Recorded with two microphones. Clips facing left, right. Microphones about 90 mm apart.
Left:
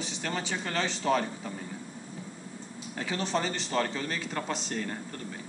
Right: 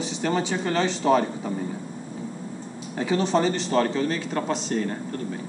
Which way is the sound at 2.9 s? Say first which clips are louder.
Right 8 dB; 10° right (ahead or behind).